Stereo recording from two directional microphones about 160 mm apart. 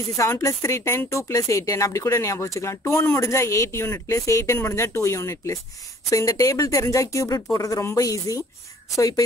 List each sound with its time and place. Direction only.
0.2 s speech: 20° left (ahead or behind)